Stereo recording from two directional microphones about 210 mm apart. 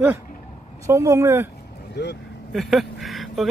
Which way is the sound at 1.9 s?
50° left (ahead or behind).